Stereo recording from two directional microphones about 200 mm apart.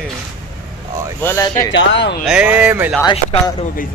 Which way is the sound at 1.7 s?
65° left (ahead or behind).